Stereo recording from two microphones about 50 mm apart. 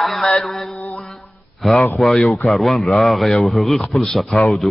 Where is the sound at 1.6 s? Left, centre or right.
Centre.